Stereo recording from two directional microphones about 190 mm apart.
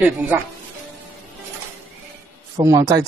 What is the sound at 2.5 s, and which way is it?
Speech, 20° right (ahead or behind).